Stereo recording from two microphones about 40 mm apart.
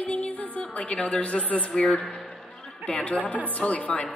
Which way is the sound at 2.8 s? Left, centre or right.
Left.